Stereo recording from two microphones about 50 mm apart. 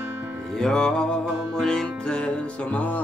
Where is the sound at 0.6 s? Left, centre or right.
Centre.